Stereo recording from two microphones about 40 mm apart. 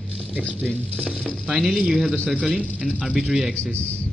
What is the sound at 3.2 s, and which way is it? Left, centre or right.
Speech, centre.